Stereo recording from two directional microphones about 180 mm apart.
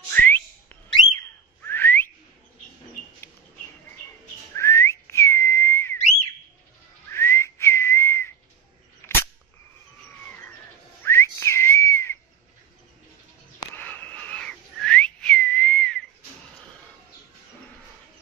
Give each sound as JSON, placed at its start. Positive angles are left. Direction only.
{"t": 0.1, "sound": "whistling", "side_deg": 10}
{"t": 1.6, "sound": "whistling", "side_deg": 10}
{"t": 4.6, "sound": "whistling", "side_deg": 15}
{"t": 7.1, "sound": "whistling", "side_deg": 15}
{"t": 9.0, "sound": "cap gun", "side_deg": 10}
{"t": 10.2, "sound": "bird", "side_deg": 10}
{"t": 11.1, "sound": "whistling", "side_deg": 15}
{"t": 13.7, "sound": "whistling", "side_deg": 10}